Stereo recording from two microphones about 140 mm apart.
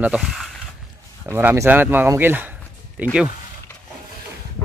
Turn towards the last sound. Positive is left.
turn(degrees=-15)  # may be behind; listen again after turning